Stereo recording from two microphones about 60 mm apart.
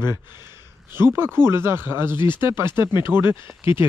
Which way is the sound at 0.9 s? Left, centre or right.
Right.